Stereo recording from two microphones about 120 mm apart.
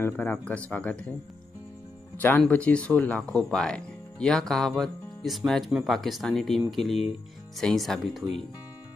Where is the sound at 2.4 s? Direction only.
10° left (ahead or behind).